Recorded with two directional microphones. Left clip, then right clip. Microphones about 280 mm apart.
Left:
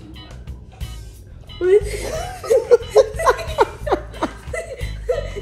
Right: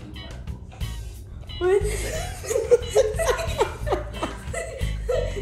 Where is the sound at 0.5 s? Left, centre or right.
Centre.